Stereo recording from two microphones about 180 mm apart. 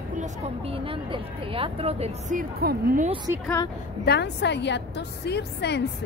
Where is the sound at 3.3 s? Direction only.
15° right (ahead or behind).